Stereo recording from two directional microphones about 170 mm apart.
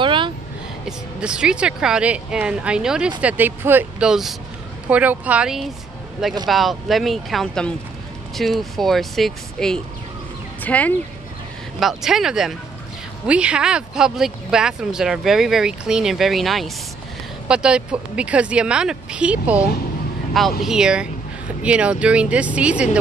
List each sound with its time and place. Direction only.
0.0 s vehicle: 30° right (ahead or behind)
0.8 s a woman's voice: 5° right (ahead or behind)
11.8 s a woman's voice: centre (ahead or behind)
20.6 s a woman's voice: 5° right (ahead or behind)